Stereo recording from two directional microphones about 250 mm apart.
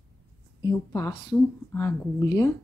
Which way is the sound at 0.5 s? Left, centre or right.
Centre.